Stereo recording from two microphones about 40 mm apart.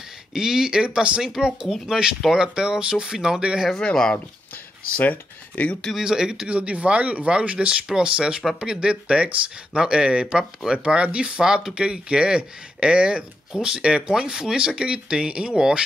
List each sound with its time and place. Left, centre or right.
0.3 s speech: centre
1.3 s speech: centre
3.9 s speech: centre
4.9 s speech: left
5.9 s speech: centre
6.5 s speech: right